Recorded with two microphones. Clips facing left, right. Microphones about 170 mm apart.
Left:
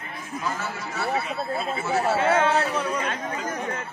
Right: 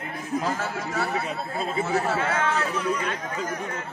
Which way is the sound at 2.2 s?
30° left (ahead or behind).